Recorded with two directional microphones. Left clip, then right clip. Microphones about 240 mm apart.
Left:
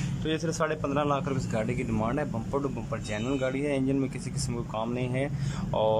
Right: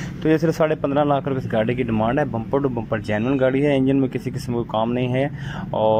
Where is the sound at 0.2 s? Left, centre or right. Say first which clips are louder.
Right 11 dB; centre.